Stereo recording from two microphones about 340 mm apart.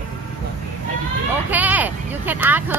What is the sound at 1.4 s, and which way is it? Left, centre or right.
Speech, centre.